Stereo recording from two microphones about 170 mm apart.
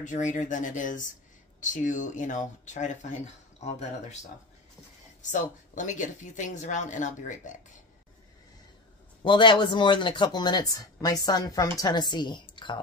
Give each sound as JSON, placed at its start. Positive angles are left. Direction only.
{"t": 0.0, "sound": "speech", "side_deg": 45}
{"t": 5.2, "sound": "speech", "side_deg": 45}
{"t": 9.2, "sound": "speech", "side_deg": 30}